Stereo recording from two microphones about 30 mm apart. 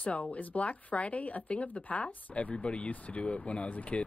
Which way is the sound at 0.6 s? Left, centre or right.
Left.